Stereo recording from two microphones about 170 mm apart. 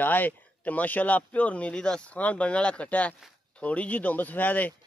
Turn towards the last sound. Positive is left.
turn(degrees=10)  # may be behind; listen again after turning